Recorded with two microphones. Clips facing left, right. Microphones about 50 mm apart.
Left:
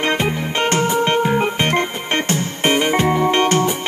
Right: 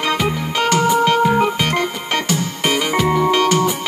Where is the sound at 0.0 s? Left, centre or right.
Left.